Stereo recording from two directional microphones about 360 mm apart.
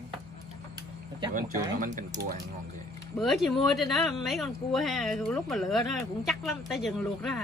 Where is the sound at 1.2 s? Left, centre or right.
Right.